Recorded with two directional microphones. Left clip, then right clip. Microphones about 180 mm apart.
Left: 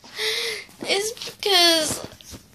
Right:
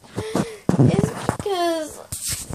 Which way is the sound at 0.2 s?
Centre (ahead or behind).